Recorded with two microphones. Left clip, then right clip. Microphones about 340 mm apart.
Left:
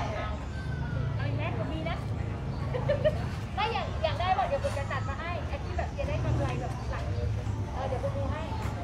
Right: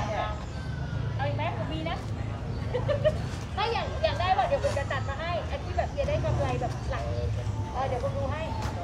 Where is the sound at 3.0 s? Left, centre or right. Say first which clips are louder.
Right 2 dB; right.